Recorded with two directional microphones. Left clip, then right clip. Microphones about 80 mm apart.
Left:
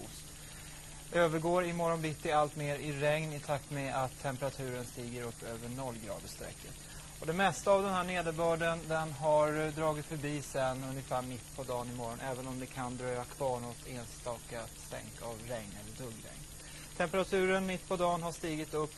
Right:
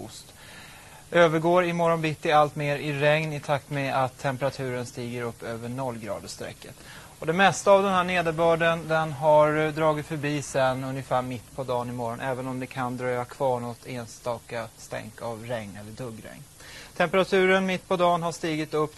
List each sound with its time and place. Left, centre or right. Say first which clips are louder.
1.1 s a man's voice: right 10 dB; centre